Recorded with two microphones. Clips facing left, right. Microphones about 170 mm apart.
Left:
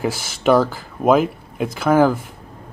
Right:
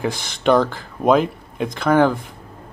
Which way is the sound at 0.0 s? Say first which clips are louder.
Left 1 dB; 5° left (ahead or behind).